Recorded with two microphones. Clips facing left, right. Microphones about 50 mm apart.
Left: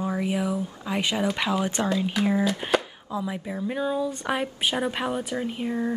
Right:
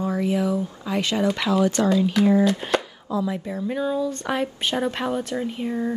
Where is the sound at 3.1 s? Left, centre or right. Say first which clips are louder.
Right 5 dB; centre.